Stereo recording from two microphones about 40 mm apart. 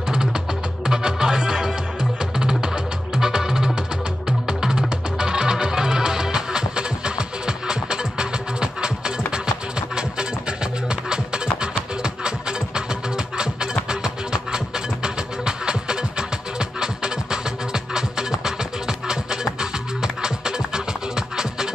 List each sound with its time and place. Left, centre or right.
0.1 s music: centre